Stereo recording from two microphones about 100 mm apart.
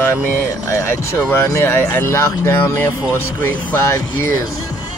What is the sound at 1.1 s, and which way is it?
Speech, 25° left (ahead or behind).